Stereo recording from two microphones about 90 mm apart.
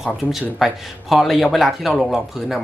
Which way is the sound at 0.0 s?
Centre (ahead or behind).